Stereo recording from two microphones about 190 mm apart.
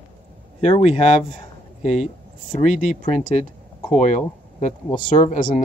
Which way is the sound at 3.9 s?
40° left (ahead or behind).